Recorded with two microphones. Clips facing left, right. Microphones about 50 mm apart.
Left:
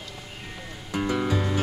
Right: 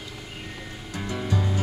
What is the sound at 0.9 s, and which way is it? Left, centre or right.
Music, left.